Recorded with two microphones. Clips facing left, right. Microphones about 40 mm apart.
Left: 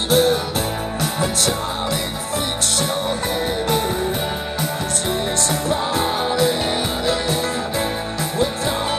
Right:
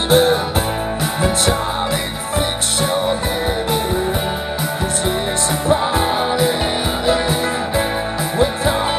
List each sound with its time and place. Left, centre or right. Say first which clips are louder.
0.1 s music: right 3 dB; right
5.7 s music: right 6 dB; centre